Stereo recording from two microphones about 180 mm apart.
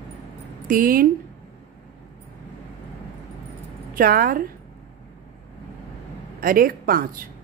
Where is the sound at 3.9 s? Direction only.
50° right (ahead or behind).